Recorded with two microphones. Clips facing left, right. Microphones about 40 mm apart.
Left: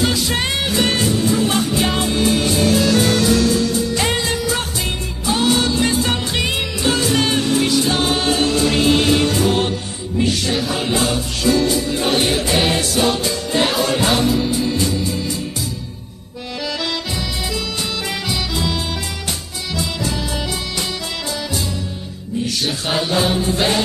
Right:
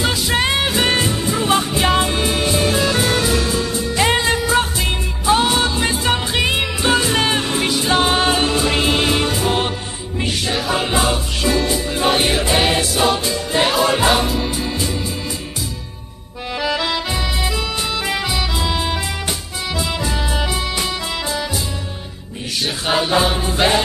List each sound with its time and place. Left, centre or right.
0.0 s music: centre
16.6 s music: centre
18.0 s music: centre
22.8 s music: centre